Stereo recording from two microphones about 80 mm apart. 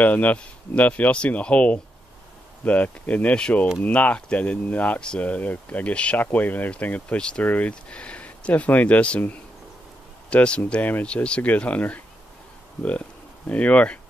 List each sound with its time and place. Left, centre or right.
0.0 s speech: left
13.5 s speech: centre